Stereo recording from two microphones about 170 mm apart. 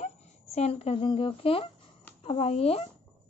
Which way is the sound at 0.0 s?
40° left (ahead or behind).